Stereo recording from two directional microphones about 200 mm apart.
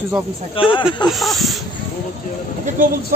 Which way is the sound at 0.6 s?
25° left (ahead or behind).